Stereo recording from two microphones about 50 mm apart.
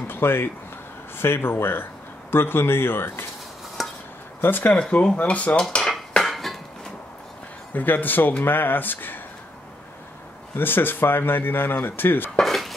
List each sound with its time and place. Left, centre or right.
0.1 s speech: left
3.8 s a sound: centre
4.4 s speech: left
4.7 s speech: centre
5.6 s dishes: centre
7.7 s speech: left
10.5 s speech: left
12.4 s dishes: centre